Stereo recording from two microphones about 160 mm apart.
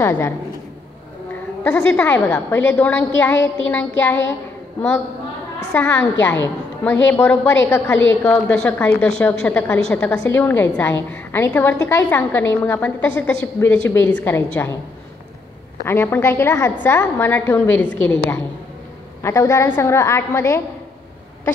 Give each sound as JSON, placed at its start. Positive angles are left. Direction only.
{"t": 0.0, "sound": "a woman's voice", "side_deg": 15}
{"t": 1.6, "sound": "a woman's voice", "side_deg": 10}
{"t": 5.7, "sound": "a woman's voice", "side_deg": 15}
{"t": 15.8, "sound": "a woman's voice", "side_deg": 15}